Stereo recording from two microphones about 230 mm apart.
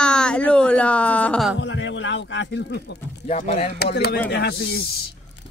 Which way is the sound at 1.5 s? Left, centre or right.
Left.